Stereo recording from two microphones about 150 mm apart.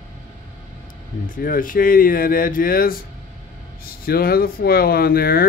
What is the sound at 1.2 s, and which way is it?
Speech, 65° left (ahead or behind).